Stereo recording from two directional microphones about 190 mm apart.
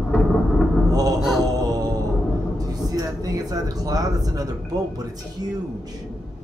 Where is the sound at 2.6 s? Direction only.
20° right (ahead or behind).